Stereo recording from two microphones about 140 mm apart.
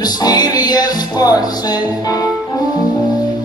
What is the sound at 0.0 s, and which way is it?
Music, 30° left (ahead or behind).